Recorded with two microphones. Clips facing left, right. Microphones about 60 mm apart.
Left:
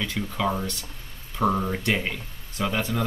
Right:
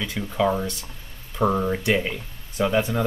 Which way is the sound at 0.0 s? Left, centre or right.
Centre.